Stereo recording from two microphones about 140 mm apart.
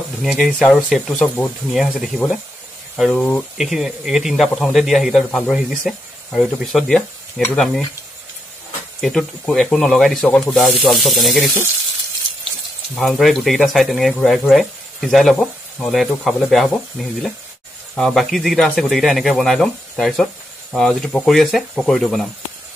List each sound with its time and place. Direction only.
0.2 s speech: centre (ahead or behind)
9.0 s speech: centre (ahead or behind)
12.9 s speech: centre (ahead or behind)